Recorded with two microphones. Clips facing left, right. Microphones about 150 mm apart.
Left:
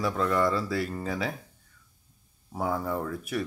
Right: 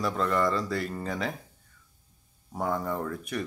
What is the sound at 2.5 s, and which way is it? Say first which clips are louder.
Speech: even; 5° left (ahead or behind).